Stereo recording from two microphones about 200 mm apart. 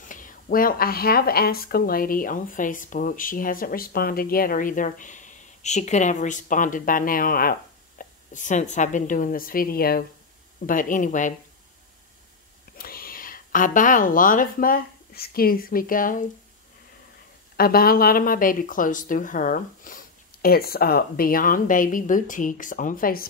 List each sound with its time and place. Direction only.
0.0 s a woman's voice: 40° left (ahead or behind)
12.7 s a woman's voice: 45° left (ahead or behind)
17.6 s speech: 50° left (ahead or behind)